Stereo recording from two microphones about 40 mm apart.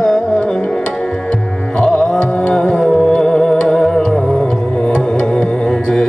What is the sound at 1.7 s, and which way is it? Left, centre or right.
Carnatic music, centre.